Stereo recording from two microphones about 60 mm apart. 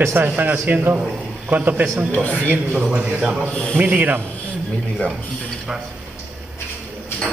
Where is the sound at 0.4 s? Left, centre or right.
Right.